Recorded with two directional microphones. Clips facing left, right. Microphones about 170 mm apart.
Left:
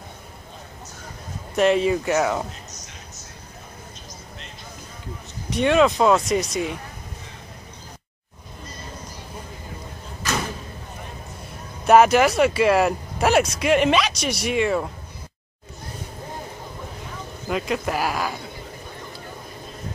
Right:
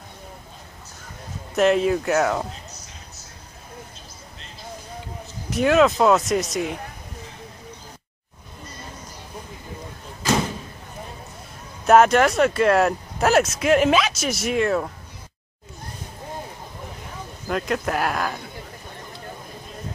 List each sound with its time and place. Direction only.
1.5 s speech: centre (ahead or behind)
5.5 s speech: centre (ahead or behind)
11.8 s speech: centre (ahead or behind)
17.5 s speech: centre (ahead or behind)